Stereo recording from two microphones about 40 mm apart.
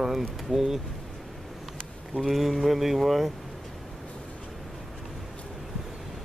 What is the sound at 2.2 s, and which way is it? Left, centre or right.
Speech, centre.